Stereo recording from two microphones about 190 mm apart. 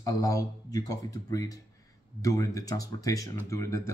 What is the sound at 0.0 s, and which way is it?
Speech, 15° left (ahead or behind).